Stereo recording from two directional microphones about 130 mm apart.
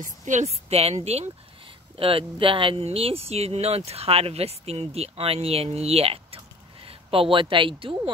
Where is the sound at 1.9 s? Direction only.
45° right (ahead or behind).